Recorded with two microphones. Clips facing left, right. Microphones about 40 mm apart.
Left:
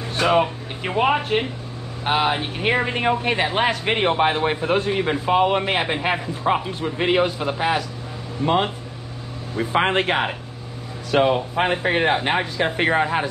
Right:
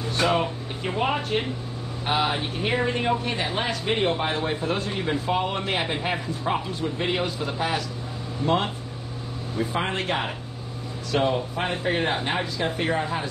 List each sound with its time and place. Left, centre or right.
0.3 s a man's voice: left
9.6 s speech: left